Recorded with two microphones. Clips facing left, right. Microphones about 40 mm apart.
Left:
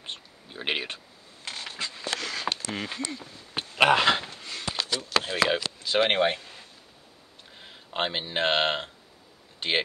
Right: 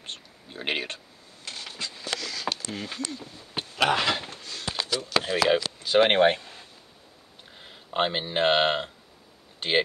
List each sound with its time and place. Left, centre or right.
0.5 s speech: centre
0.9 s a sound: left
5.1 s speech: centre
5.5 s a sound: centre
5.9 s speech: right
7.5 s speech: centre